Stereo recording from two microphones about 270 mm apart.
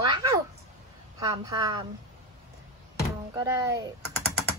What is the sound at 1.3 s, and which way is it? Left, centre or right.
Speech, centre.